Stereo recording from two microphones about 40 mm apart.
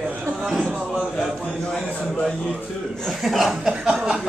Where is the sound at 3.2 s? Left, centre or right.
Centre.